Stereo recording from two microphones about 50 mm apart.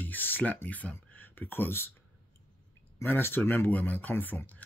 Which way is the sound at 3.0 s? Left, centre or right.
Left.